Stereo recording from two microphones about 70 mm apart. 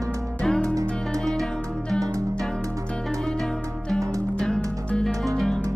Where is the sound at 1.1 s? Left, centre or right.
Right.